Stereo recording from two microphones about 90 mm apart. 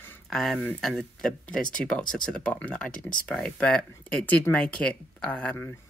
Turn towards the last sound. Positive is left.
turn(degrees=15)  # may be behind; listen again after turning